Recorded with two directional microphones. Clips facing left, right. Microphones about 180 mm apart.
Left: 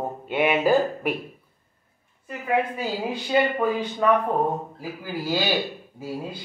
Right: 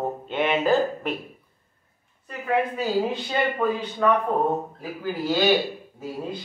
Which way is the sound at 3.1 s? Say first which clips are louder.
Left 3 dB; 10° left (ahead or behind).